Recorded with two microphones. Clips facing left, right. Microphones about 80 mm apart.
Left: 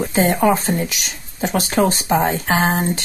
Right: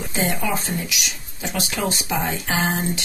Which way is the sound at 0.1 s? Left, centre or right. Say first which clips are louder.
Left 8 dB; left.